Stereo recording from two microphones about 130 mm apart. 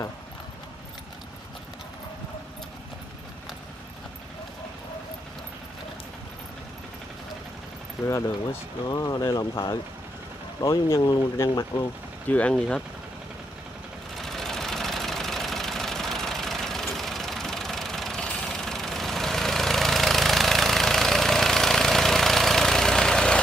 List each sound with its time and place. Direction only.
8.0 s speech: 20° left (ahead or behind)
12.3 s speech: 10° left (ahead or behind)
14.1 s engine: centre (ahead or behind)